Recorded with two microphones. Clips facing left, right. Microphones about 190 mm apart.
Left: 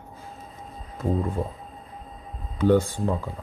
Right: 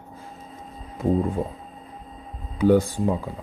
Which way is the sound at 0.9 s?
15° right (ahead or behind).